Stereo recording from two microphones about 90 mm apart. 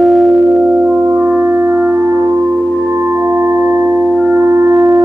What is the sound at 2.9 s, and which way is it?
Singing bowl, 25° right (ahead or behind).